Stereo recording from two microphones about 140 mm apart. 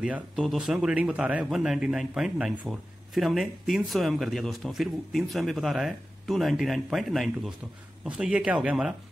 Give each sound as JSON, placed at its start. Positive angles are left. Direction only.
{"t": 0.0, "sound": "a man's voice", "side_deg": -5}